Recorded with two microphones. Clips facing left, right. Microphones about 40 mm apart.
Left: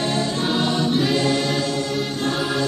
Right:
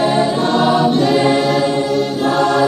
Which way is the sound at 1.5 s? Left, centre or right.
Centre.